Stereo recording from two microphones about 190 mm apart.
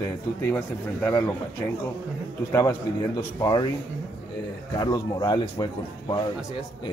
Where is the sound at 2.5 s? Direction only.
20° left (ahead or behind).